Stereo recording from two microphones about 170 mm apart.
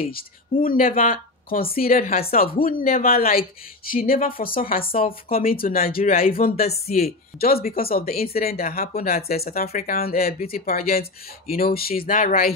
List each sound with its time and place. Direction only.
0.7 s speech: 55° left (ahead or behind)
6.5 s speech: 40° left (ahead or behind)
7.3 s speech: 60° left (ahead or behind)
12.0 s speech: 50° left (ahead or behind)